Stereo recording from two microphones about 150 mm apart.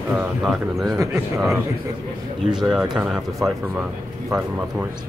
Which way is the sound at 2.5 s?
5° right (ahead or behind).